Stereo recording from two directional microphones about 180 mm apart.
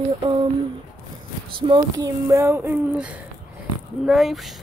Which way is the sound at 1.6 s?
25° right (ahead or behind).